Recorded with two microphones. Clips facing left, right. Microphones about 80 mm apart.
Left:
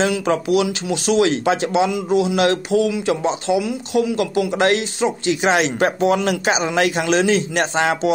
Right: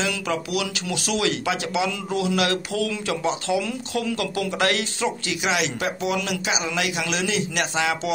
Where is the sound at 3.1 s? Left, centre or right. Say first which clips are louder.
Left 5 dB; left.